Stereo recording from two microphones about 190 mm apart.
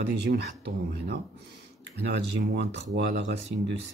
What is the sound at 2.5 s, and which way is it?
Speech, 65° right (ahead or behind).